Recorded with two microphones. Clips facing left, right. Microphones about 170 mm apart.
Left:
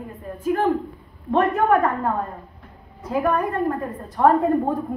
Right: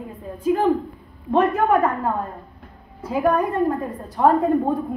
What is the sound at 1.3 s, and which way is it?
Speech, 15° right (ahead or behind).